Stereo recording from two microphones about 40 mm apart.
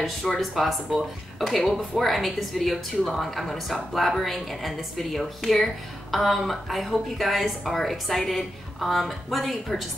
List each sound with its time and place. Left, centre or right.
0.4 s a woman's voice: centre